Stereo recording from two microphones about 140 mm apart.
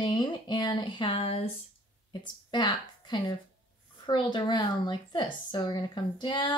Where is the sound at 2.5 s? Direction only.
30° left (ahead or behind).